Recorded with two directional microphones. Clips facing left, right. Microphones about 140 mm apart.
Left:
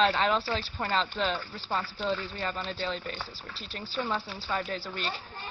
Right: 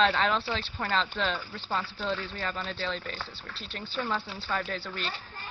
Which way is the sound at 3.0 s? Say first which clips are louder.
Left 1 dB; centre (ahead or behind).